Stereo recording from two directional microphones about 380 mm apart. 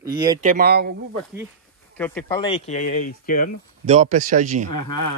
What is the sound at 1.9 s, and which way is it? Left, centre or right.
Speech, centre.